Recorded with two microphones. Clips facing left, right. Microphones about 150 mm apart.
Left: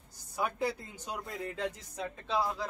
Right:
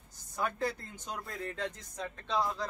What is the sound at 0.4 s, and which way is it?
Speech, 10° left (ahead or behind).